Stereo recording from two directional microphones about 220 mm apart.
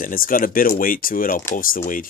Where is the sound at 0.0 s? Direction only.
40° left (ahead or behind).